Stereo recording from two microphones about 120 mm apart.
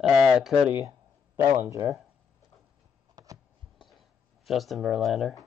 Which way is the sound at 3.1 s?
30° right (ahead or behind).